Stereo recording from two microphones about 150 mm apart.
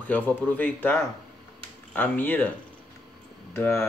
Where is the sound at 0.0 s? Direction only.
10° left (ahead or behind).